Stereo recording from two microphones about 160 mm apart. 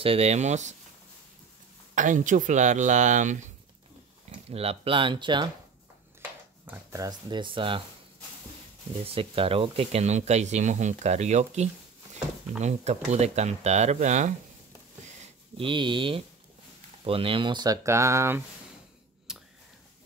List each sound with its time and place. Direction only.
0.0 s speech: 40° right (ahead or behind)
2.0 s speech: 50° right (ahead or behind)
4.3 s speech: 40° right (ahead or behind)
6.6 s a sound: 10° right (ahead or behind)
7.0 s speech: 25° right (ahead or behind)
9.0 s speech: 35° right (ahead or behind)
15.5 s speech: 30° right (ahead or behind)
19.3 s a sound: 5° right (ahead or behind)